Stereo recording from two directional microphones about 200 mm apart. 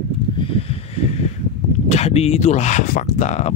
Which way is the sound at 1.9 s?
30° left (ahead or behind).